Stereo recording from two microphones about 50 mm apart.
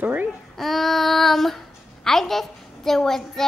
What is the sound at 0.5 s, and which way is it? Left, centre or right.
Child singing, centre.